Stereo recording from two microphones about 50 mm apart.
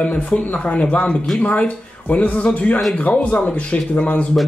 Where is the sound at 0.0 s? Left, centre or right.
Left.